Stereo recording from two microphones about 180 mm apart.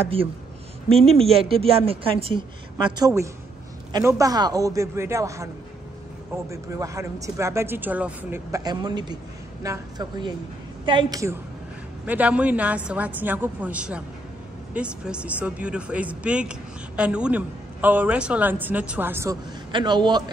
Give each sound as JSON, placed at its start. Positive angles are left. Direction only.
{"t": 1.0, "sound": "speech", "side_deg": -35}
{"t": 2.8, "sound": "a man's voice", "side_deg": -20}
{"t": 6.5, "sound": "a man's voice", "side_deg": -15}
{"t": 12.1, "sound": "speech", "side_deg": -10}
{"t": 19.7, "sound": "a man's voice", "side_deg": -25}